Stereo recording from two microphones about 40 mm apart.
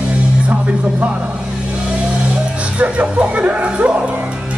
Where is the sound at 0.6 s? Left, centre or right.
Right.